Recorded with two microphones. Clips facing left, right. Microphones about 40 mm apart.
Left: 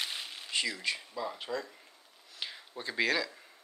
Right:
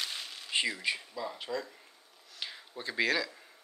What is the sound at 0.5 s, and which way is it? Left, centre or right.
Speech, centre.